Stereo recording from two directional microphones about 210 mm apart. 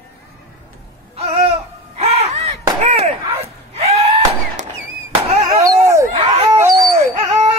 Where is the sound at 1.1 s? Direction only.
30° right (ahead or behind).